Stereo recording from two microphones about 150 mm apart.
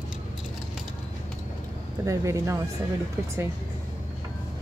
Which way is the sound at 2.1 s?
20° right (ahead or behind).